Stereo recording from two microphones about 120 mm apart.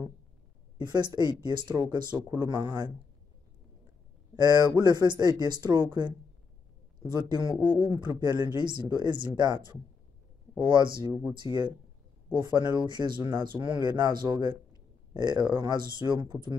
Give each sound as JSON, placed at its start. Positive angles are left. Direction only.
{"t": 0.7, "sound": "speech", "side_deg": -40}
{"t": 4.4, "sound": "speech", "side_deg": -35}
{"t": 12.3, "sound": "speech", "side_deg": -40}
{"t": 15.1, "sound": "speech", "side_deg": -40}